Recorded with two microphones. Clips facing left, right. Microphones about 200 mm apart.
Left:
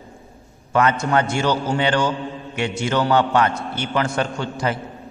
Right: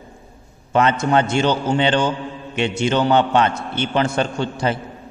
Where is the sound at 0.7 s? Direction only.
25° right (ahead or behind).